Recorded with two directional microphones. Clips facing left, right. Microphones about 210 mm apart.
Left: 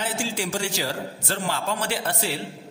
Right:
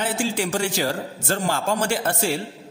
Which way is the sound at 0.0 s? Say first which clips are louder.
Right 4 dB; 55° right (ahead or behind).